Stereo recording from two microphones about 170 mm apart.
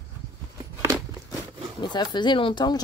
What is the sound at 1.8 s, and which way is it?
A woman's voice, 25° left (ahead or behind).